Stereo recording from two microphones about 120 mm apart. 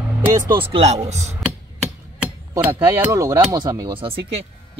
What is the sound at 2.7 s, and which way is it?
Speech, 25° right (ahead or behind).